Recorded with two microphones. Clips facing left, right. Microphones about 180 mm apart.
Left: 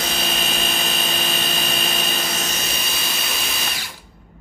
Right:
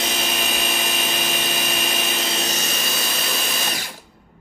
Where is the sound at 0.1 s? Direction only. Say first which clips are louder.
Even; 15° right (ahead or behind).